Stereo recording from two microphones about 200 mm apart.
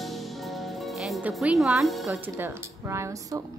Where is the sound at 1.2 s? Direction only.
5° right (ahead or behind).